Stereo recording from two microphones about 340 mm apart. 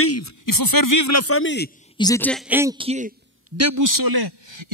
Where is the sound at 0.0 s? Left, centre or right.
Left.